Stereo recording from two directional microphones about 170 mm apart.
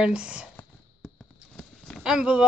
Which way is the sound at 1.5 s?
5° left (ahead or behind).